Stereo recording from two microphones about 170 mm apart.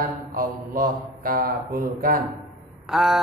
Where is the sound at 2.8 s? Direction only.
Centre (ahead or behind).